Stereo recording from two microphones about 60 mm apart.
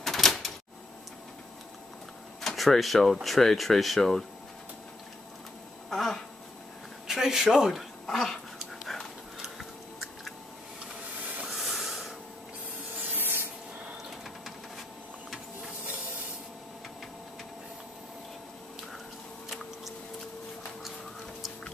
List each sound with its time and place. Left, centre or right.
0.0 s a sound: centre
2.4 s speech: centre
5.9 s a sound: centre
7.1 s speech: centre
8.1 s dog: centre
9.6 s chewing: centre
11.1 s a sound: right
11.4 s train: centre
13.1 s sanding: right